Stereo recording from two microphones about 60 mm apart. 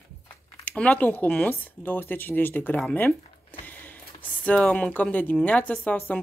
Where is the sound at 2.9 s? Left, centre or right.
Left.